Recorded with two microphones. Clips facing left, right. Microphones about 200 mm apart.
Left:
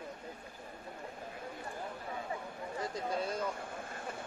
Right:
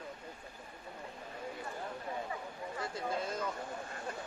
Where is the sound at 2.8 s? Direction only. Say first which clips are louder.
Left 1 dB; 15° left (ahead or behind).